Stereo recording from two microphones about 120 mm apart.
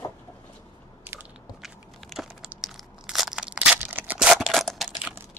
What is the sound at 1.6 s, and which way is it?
Biting, centre (ahead or behind).